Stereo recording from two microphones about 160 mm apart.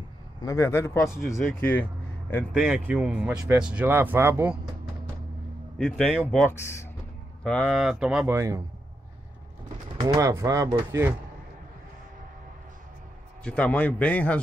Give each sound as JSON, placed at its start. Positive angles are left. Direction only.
{"t": 0.4, "sound": "a man's voice", "side_deg": 20}
{"t": 2.5, "sound": "speech", "side_deg": -5}
{"t": 5.8, "sound": "speech", "side_deg": 5}
{"t": 6.5, "sound": "a man's voice", "side_deg": 15}
{"t": 7.4, "sound": "speech", "side_deg": 5}
{"t": 8.3, "sound": "speech", "side_deg": -20}
{"t": 9.9, "sound": "speech", "side_deg": -20}
{"t": 13.4, "sound": "a man's voice", "side_deg": 5}